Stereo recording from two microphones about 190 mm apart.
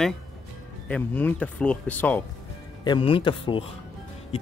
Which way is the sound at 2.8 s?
25° left (ahead or behind).